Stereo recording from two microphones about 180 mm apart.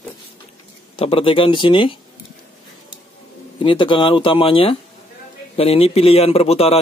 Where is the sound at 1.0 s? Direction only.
30° left (ahead or behind).